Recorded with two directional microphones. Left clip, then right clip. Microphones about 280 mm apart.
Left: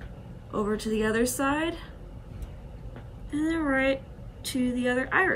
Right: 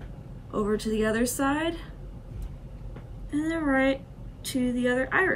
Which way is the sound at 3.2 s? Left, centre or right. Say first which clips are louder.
Even; centre.